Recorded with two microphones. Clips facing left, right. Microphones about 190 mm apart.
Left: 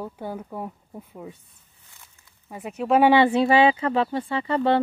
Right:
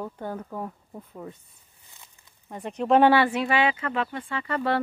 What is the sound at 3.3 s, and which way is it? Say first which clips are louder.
Speech: left 6 dB; 30° left (ahead or behind).